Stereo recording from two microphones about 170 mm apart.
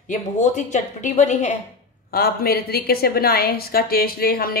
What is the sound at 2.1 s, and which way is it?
A woman's voice, 65° left (ahead or behind).